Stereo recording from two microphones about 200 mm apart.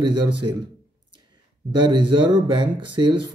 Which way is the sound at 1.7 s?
20° right (ahead or behind).